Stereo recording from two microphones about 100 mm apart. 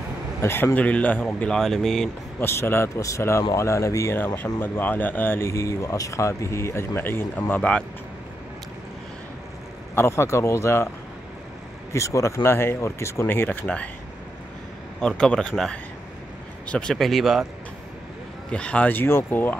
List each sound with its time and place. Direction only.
0.4 s a man's voice: 25° left (ahead or behind); by 2.0 s 5° left (ahead or behind)
2.4 s speech: 25° left (ahead or behind)
4.6 s speech: 20° left (ahead or behind)
9.9 s speech: 25° left (ahead or behind)
11.9 s speech: 30° left (ahead or behind)
15.0 s a man's voice: 10° left (ahead or behind)
18.5 s speech: 10° left (ahead or behind)